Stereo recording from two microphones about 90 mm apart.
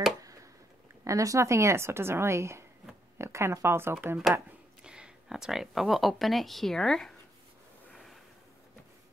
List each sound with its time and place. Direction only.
0.2 s a sound: 40° right (ahead or behind)
1.0 s a woman's voice: 35° right (ahead or behind)
4.8 s speech: 10° right (ahead or behind); by 7.2 s 5° left (ahead or behind)
7.9 s snort: centre (ahead or behind)